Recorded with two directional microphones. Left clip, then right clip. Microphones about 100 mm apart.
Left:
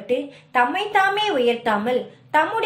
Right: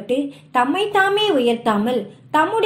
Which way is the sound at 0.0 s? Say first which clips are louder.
Right 2 dB; 30° right (ahead or behind).